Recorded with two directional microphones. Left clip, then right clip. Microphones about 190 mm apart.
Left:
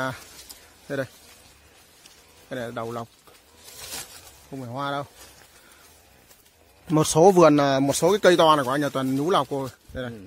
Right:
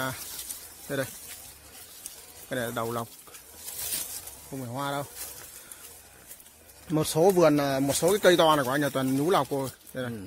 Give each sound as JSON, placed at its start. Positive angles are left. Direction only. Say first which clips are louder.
{"t": 0.8, "sound": "speech", "louder": "left 2 dB", "side_deg": 20}
{"t": 2.5, "sound": "speech", "louder": "even", "side_deg": 0}
{"t": 4.6, "sound": "speech", "louder": "left 3 dB", "side_deg": 20}
{"t": 6.9, "sound": "speech", "louder": "left 6 dB", "side_deg": 35}